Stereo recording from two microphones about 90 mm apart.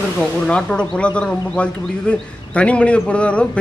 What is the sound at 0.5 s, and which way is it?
Speech, 10° left (ahead or behind).